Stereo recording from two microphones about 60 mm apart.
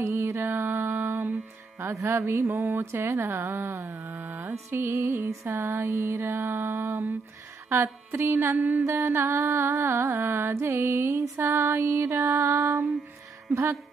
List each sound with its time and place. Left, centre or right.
0.0 s music: right
0.5 s mantra: right
1.8 s music: right
3.7 s music: right
4.5 s music: right
5.6 s a sound: right
5.9 s music: right
11.1 s music: right
13.5 s a sound: right